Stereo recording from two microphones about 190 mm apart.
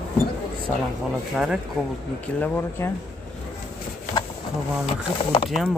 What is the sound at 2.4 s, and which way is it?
Speech, 10° left (ahead or behind).